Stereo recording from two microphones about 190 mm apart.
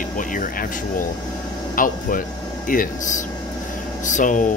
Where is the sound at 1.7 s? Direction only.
45° left (ahead or behind).